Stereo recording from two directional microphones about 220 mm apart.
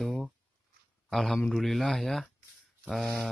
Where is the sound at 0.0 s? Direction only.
Centre (ahead or behind).